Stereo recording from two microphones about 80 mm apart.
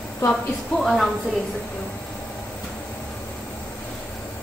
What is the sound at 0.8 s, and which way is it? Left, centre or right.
Speech, centre.